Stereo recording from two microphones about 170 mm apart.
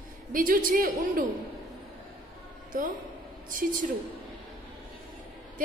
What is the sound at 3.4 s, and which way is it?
Speech, 50° right (ahead or behind).